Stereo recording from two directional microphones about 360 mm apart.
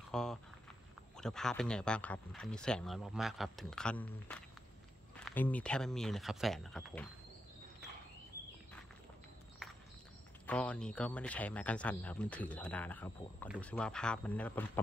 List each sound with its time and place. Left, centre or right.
0.1 s walk: centre
1.1 s speech: centre
9.6 s walk: centre
10.4 s speech: centre